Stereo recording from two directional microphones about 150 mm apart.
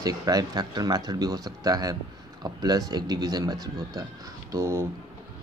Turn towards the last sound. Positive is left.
turn(degrees=-20)  # may be behind; listen again after turning